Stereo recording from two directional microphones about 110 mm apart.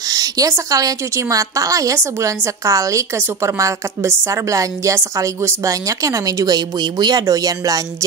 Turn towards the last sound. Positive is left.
turn(degrees=-35)  # may be behind; listen again after turning